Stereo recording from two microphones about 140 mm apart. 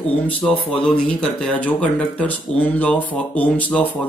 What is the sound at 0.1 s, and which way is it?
Speech, 10° left (ahead or behind).